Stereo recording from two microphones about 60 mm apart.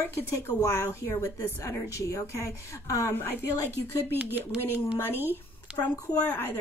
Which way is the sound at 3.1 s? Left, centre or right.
Left.